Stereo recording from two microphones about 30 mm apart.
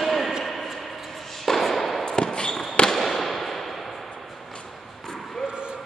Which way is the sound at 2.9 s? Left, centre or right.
Centre.